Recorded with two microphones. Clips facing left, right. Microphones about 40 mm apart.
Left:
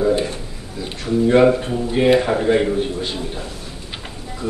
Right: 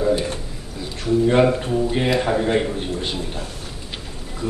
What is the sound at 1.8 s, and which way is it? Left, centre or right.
Speech, centre.